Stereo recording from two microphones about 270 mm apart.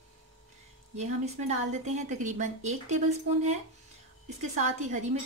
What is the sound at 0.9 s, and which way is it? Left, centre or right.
A woman's voice, right.